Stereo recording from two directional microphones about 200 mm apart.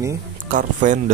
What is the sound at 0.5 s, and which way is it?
Speech, 40° right (ahead or behind).